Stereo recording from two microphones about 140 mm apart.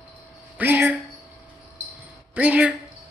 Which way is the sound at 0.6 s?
15° right (ahead or behind).